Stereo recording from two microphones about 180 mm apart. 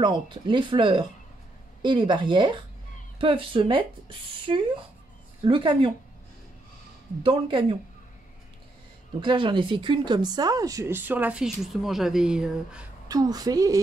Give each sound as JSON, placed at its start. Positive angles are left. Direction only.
{"t": 0.0, "sound": "speech", "side_deg": -25}
{"t": 7.2, "sound": "speech", "side_deg": -30}
{"t": 9.2, "sound": "speech", "side_deg": -25}
{"t": 13.1, "sound": "speech", "side_deg": -20}